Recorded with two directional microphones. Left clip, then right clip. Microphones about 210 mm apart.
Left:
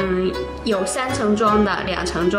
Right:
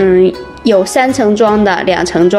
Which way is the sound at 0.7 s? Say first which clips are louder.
Right 12 dB; 35° right (ahead or behind).